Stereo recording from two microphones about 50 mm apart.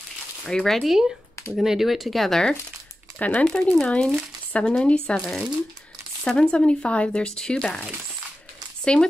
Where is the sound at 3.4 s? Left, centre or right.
Left.